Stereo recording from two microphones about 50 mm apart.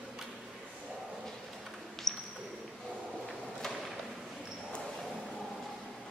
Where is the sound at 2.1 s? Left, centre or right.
Centre.